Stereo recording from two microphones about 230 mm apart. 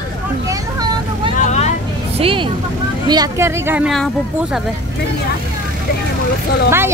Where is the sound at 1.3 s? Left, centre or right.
Left.